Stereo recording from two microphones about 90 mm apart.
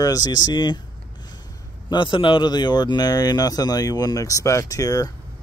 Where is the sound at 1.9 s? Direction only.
65° left (ahead or behind); by 5.1 s 40° left (ahead or behind).